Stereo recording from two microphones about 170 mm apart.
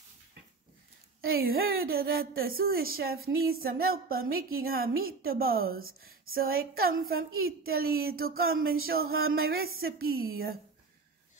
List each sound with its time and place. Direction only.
1.2 s speech: 60° right (ahead or behind)